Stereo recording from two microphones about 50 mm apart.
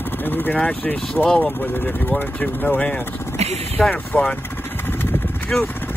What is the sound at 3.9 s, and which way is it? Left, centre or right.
Speech, centre.